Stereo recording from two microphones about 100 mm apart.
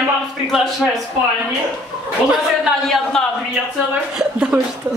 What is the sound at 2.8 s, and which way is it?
Speech, 5° left (ahead or behind).